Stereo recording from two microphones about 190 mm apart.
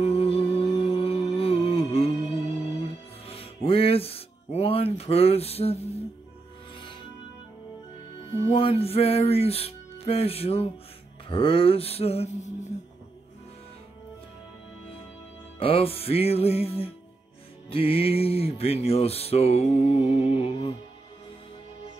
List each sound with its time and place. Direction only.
0.0 s music: 30° left (ahead or behind)
3.3 s music: 30° left (ahead or behind)
8.5 s music: 30° left (ahead or behind)
15.6 s music: 30° left (ahead or behind)